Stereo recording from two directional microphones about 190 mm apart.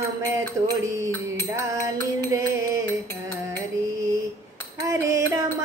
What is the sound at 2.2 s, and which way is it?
Music, 20° right (ahead or behind).